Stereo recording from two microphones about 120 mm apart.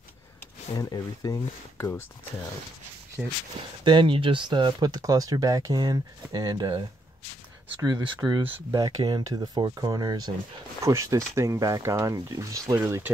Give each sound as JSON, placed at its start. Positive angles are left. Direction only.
{"t": 0.7, "sound": "speech", "side_deg": 30}
{"t": 3.8, "sound": "speech", "side_deg": -40}
{"t": 12.8, "sound": "speech", "side_deg": -15}